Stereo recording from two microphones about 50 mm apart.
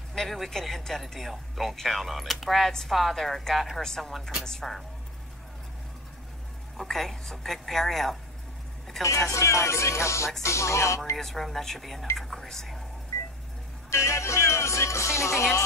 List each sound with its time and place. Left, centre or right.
0.1 s speech: centre
6.8 s speech: centre
9.0 s speech: left
11.1 s speech: centre
13.8 s speech: left